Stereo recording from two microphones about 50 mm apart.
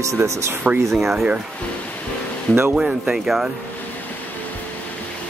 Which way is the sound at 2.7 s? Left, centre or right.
Centre.